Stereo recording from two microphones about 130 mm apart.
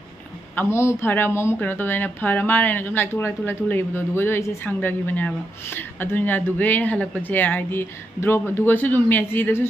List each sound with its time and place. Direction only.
0.6 s a woman's voice: 20° left (ahead or behind)